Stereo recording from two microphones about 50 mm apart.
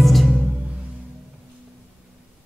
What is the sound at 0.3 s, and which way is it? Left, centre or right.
Music, right.